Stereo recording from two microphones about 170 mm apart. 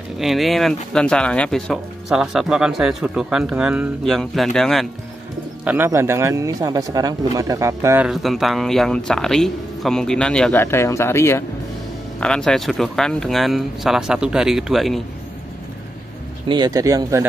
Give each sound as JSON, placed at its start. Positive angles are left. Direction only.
{"t": 0.2, "sound": "speech", "side_deg": 0}
{"t": 5.7, "sound": "a man's voice", "side_deg": -15}
{"t": 8.1, "sound": "speech", "side_deg": 0}
{"t": 12.2, "sound": "speech", "side_deg": 5}
{"t": 16.4, "sound": "speech", "side_deg": -25}